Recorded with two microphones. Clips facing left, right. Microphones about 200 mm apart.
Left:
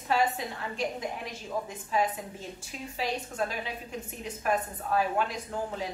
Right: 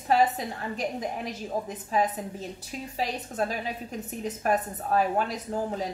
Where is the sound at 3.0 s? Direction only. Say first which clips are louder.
Right 2 dB; 40° right (ahead or behind).